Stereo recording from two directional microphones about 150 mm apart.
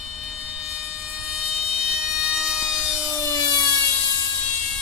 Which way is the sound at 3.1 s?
25° left (ahead or behind).